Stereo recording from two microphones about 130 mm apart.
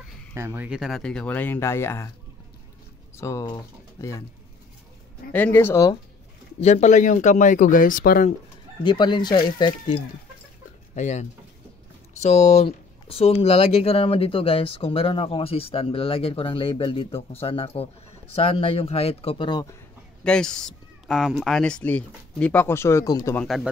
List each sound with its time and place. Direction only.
0.3 s speech: 20° right (ahead or behind)
0.7 s speech: centre (ahead or behind); by 2.0 s 20° left (ahead or behind)
3.2 s speech: 20° left (ahead or behind)
5.3 s speech: 15° left (ahead or behind)
6.6 s speech: 60° left (ahead or behind); by 8.3 s 90° left
8.8 s speech: 35° left (ahead or behind)
11.0 s speech: 60° left (ahead or behind); by 19.6 s 40° left (ahead or behind)
20.2 s speech: 5° left (ahead or behind); by 23.3 s 25° left (ahead or behind)
23.3 s speech: 5° left (ahead or behind)